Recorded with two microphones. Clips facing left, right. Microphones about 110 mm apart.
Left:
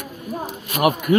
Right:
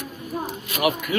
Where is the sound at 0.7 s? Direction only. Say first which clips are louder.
Left 6 dB; 45° left (ahead or behind).